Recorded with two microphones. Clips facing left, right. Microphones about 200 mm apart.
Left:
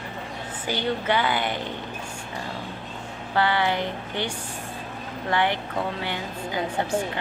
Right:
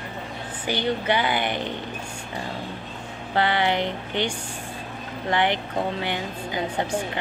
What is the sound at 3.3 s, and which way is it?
Speech, 20° right (ahead or behind).